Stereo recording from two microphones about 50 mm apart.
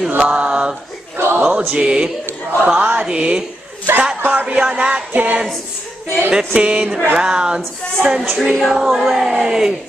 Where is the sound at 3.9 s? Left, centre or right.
Right.